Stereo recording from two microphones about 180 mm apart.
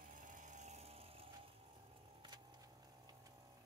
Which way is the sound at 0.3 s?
45° right (ahead or behind).